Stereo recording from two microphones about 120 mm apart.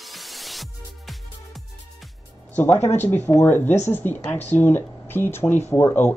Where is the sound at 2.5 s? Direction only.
20° left (ahead or behind).